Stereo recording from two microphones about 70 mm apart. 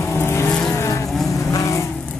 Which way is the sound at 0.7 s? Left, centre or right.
Left.